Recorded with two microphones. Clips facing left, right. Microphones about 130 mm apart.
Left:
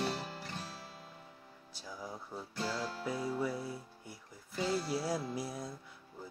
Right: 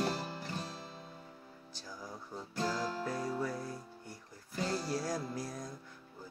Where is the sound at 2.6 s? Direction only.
40° right (ahead or behind).